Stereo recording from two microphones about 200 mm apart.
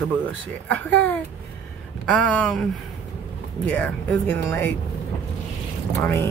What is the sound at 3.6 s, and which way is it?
Speech, 5° left (ahead or behind).